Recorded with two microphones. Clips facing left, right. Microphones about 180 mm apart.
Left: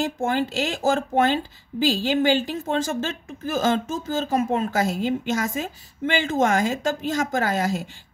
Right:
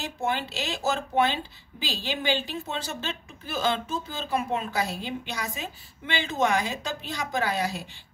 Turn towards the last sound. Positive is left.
turn(degrees=45)  # may be behind; listen again after turning